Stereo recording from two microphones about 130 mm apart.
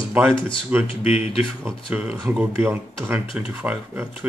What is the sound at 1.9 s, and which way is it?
Speech, 15° right (ahead or behind).